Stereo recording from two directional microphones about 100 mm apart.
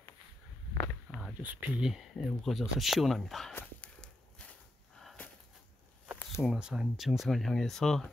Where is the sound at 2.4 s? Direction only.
Centre (ahead or behind).